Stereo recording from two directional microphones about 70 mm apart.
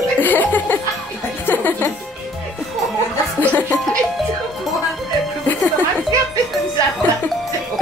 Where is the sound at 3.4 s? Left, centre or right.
Left.